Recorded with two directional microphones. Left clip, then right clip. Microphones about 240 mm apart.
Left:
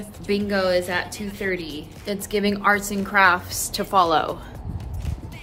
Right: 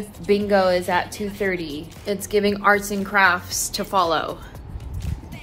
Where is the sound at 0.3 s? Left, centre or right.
Centre.